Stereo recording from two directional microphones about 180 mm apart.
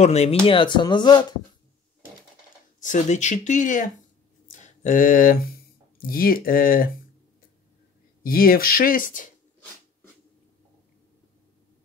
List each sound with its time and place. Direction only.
0.0 s speech: 35° left (ahead or behind)
2.8 s speech: 45° left (ahead or behind)
8.2 s speech: 55° left (ahead or behind)